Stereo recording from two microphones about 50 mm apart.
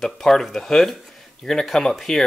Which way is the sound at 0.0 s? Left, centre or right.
Centre.